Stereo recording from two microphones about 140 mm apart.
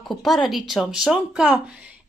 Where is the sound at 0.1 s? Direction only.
Centre (ahead or behind).